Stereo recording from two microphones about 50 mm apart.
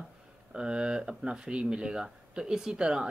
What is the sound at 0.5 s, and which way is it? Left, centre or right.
Speech, centre.